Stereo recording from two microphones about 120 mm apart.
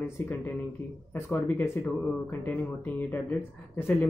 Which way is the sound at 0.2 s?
15° left (ahead or behind).